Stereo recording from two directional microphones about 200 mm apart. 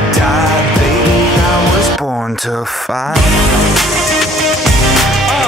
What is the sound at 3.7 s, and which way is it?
Music, centre (ahead or behind).